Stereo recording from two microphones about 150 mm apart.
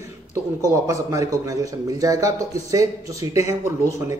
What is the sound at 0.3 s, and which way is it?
A man's voice, 20° right (ahead or behind).